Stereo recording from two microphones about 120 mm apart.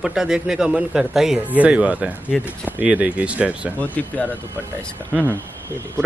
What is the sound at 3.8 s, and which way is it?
Speech, 15° left (ahead or behind).